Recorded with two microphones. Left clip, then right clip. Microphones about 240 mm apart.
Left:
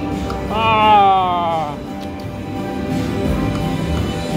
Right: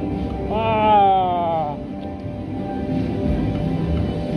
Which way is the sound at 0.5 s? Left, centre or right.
Centre.